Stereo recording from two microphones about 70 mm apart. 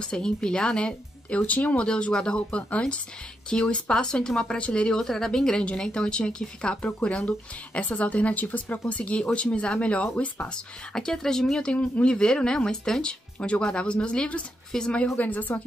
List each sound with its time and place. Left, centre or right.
0.0 s speech: centre
15.1 s speech: left